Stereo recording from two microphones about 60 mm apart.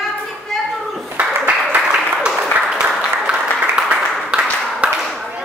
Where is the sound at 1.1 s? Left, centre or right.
Right.